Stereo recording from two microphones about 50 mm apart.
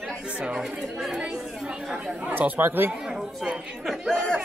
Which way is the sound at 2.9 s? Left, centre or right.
Centre.